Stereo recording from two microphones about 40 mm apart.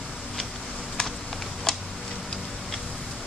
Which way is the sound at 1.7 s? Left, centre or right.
Centre.